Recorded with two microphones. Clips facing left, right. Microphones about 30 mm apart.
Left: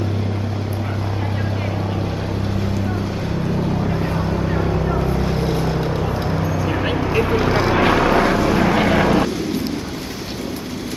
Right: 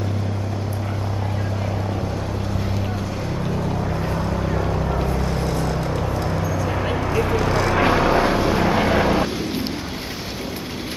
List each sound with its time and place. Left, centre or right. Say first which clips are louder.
3.8 s vehicle: left 3 dB; centre